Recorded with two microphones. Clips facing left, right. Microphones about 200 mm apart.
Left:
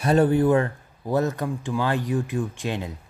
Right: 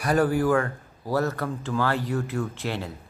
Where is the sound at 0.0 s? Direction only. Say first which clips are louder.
Left 3 dB; 25° left (ahead or behind).